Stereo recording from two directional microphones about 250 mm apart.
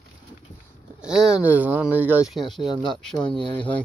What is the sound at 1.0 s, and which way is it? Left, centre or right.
Speech, centre.